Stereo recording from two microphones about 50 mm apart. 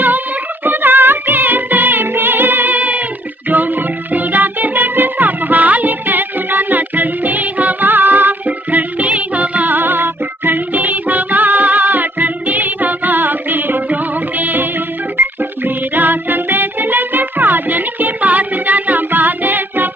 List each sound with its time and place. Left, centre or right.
0.7 s music: right